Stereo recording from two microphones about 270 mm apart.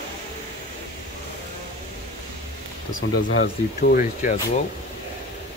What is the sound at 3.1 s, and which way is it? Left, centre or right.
Speech, left.